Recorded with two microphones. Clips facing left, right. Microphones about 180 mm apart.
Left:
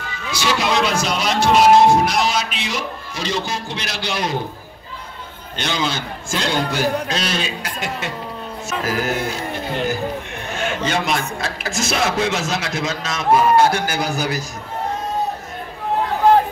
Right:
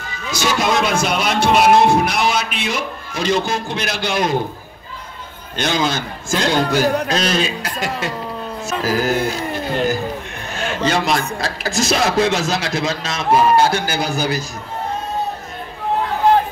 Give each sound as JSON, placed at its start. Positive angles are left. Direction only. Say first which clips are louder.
{"t": 0.3, "sound": "speech", "louder": "right 2 dB", "side_deg": -45}
{"t": 5.6, "sound": "a man's voice", "louder": "right 4 dB", "side_deg": -45}